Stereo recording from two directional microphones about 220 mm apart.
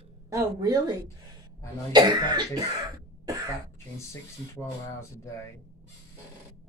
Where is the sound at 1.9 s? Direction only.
20° right (ahead or behind).